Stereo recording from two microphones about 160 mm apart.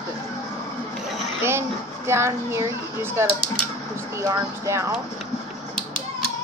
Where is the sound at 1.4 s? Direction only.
15° right (ahead or behind).